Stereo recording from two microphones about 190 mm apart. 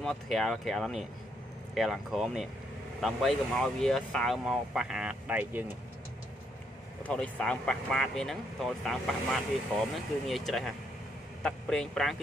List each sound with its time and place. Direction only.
0.0 s speech: centre (ahead or behind)
7.0 s speech: 5° left (ahead or behind)